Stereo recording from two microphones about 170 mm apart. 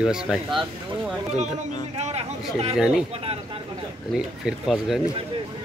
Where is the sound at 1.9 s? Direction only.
40° right (ahead or behind).